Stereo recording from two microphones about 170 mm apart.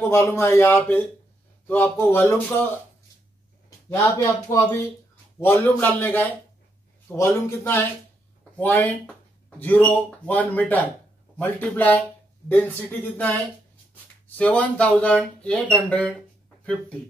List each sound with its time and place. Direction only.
0.0 s speech: 15° left (ahead or behind)
3.9 s speech: 20° left (ahead or behind)